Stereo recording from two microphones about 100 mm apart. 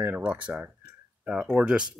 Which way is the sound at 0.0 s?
15° right (ahead or behind).